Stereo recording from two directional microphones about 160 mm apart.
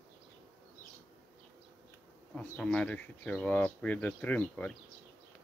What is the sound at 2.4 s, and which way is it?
Speech, 5° left (ahead or behind).